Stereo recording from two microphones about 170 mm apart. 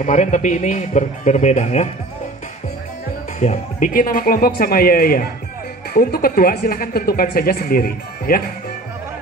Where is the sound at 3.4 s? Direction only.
45° left (ahead or behind).